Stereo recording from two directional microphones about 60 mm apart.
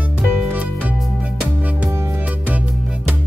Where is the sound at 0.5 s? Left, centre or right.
Right.